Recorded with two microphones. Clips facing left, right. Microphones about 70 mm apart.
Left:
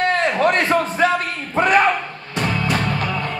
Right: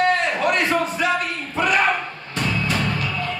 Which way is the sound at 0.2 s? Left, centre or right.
Left.